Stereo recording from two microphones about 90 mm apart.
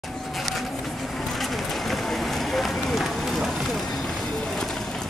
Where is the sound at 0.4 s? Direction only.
Centre (ahead or behind).